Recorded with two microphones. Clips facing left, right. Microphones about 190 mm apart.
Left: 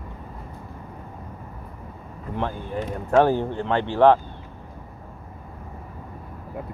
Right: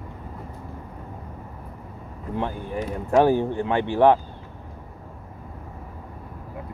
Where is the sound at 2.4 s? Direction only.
15° right (ahead or behind).